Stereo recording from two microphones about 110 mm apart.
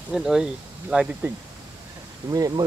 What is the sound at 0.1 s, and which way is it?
Speech, 5° right (ahead or behind).